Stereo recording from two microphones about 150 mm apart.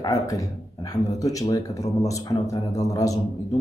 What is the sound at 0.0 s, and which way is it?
Speech, 25° left (ahead or behind).